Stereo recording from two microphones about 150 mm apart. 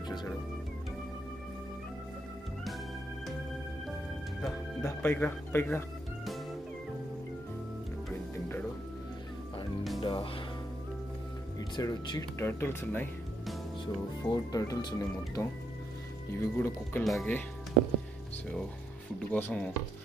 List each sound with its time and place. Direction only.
4.8 s speech: 15° left (ahead or behind)
10.0 s music: 30° left (ahead or behind)
11.7 s speech: 25° left (ahead or behind)
14.2 s speech: 25° left (ahead or behind)
17.0 s speech: centre (ahead or behind)
19.3 s speech: 10° left (ahead or behind)